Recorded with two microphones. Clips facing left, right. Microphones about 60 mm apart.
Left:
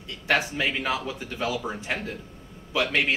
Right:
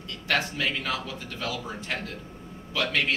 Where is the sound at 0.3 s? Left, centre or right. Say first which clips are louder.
Left 2 dB; centre.